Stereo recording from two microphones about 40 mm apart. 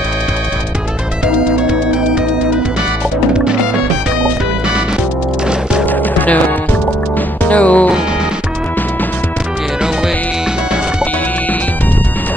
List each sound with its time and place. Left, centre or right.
1.2 s music: right
5.9 s music: left